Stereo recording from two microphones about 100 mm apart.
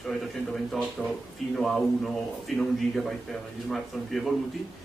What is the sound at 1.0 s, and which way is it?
Speech, 15° left (ahead or behind).